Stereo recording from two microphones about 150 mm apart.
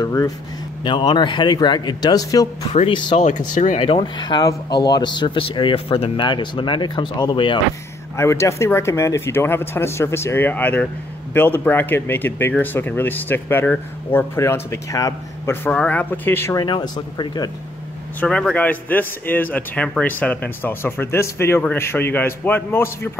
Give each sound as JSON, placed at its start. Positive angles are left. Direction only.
{"t": 0.0, "sound": "speech", "side_deg": 25}
{"t": 3.2, "sound": "speech", "side_deg": 55}
{"t": 3.8, "sound": "speech", "side_deg": 30}
{"t": 8.2, "sound": "speech", "side_deg": 20}
{"t": 16.6, "sound": "speech", "side_deg": 30}
{"t": 18.2, "sound": "speech", "side_deg": 5}